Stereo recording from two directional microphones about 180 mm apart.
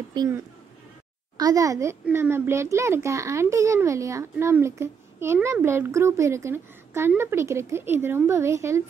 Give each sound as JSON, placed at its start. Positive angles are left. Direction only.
{"t": 0.1, "sound": "speech", "side_deg": -20}
{"t": 1.4, "sound": "a child's voice", "side_deg": -20}